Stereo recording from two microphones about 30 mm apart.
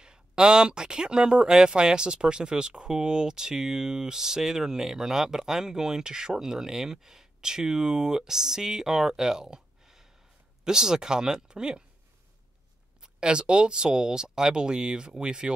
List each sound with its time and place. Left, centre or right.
0.0 s speech: right
13.0 s speech: right